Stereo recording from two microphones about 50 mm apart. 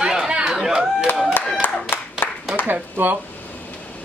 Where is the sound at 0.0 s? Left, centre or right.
Centre.